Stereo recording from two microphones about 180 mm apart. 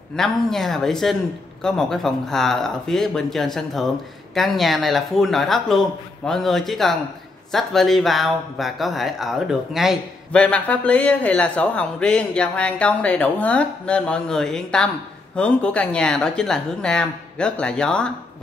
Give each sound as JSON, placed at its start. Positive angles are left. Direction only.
{"t": 0.1, "sound": "speech", "side_deg": 0}